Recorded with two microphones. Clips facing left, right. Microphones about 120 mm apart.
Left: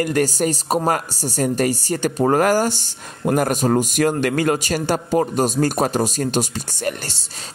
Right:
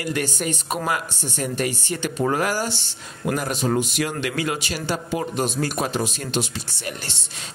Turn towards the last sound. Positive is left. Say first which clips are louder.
# left 7 dB
turn(degrees=45)  # may be behind; listen again after turning